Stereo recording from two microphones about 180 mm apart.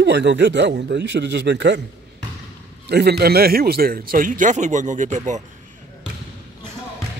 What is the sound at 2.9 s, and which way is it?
Speech, 65° right (ahead or behind).